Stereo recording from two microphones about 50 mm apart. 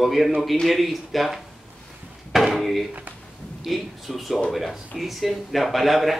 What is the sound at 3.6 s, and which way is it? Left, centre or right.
Speech, centre.